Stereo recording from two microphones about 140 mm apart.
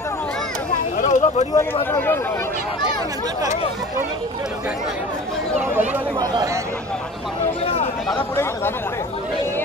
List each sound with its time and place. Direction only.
0.9 s a sound: 55° left (ahead or behind)
1.9 s speech: 15° left (ahead or behind)
6.1 s speech: 25° right (ahead or behind)
8.2 s speech: 15° left (ahead or behind)